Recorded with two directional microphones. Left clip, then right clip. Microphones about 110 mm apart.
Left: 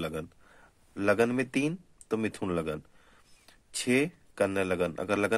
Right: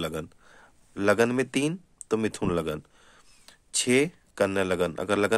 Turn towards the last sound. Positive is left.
turn(degrees=-40)  # may be behind; listen again after turning